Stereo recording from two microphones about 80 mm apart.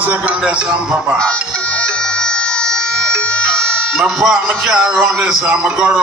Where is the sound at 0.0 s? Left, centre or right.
Centre.